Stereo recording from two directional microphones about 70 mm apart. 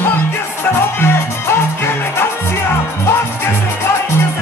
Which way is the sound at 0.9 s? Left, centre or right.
Left.